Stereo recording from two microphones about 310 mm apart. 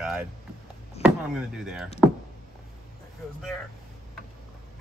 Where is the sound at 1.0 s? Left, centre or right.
Centre.